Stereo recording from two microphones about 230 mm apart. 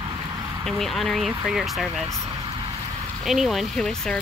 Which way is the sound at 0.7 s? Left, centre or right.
Centre.